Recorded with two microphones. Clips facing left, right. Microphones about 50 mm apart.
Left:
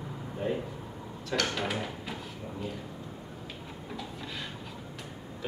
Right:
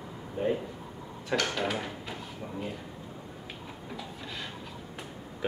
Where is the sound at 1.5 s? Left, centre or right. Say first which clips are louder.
Right 1 dB; centre.